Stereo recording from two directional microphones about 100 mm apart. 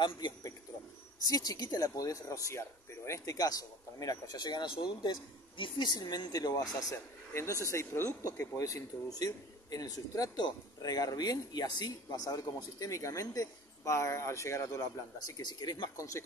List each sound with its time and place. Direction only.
1.2 s a man's voice: 40° left (ahead or behind)